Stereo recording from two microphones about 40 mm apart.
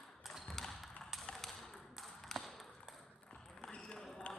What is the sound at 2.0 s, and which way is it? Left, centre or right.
Tap, centre.